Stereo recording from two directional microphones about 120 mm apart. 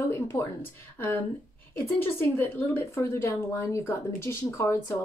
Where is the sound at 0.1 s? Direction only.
25° left (ahead or behind).